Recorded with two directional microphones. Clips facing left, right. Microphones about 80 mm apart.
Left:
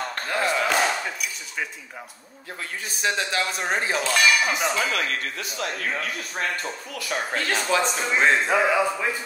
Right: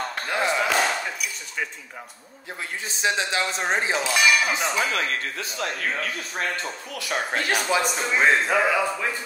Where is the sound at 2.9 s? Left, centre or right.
Right.